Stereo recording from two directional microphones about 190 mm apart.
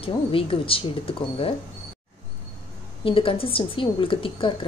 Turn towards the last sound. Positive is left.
turn(degrees=25)  # may be behind; listen again after turning